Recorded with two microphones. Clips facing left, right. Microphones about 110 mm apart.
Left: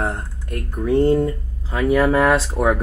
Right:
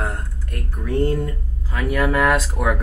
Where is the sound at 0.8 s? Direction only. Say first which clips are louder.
Left 6 dB; 25° left (ahead or behind).